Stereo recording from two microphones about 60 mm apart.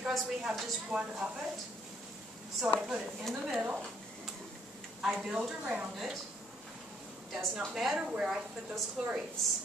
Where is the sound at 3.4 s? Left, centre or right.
Centre.